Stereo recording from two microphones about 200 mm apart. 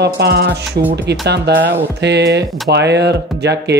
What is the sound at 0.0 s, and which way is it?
Speech, 55° right (ahead or behind).